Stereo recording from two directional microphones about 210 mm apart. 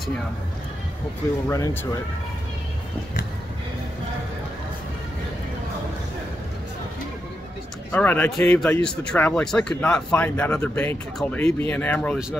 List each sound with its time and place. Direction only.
1.5 s speech: 15° left (ahead or behind)
7.9 s speech: 10° left (ahead or behind)